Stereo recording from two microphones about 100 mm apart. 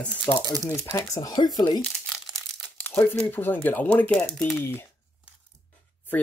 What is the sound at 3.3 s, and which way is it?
Speech, 20° left (ahead or behind).